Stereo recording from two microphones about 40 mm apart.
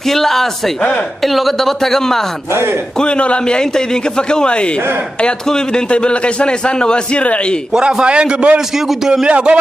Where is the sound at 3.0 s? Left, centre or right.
Left.